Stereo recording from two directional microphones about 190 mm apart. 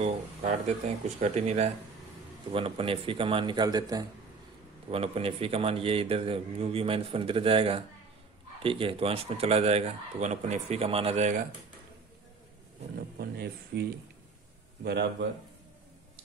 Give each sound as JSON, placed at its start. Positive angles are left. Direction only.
{"t": 0.0, "sound": "a man's voice", "side_deg": -40}
{"t": 4.9, "sound": "a man's voice", "side_deg": -30}
{"t": 13.2, "sound": "speech", "side_deg": -55}